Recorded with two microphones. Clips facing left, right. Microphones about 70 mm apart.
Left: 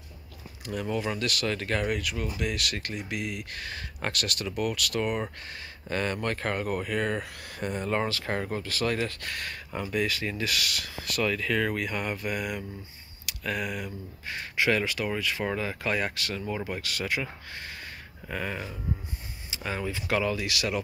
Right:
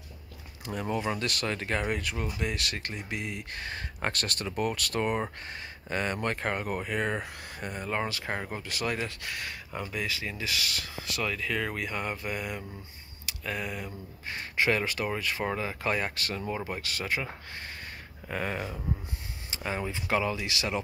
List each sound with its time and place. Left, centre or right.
0.7 s speech: right
5.9 s speech: centre
7.6 s speech: centre
8.1 s speech: centre
18.3 s speech: right
19.6 s speech: right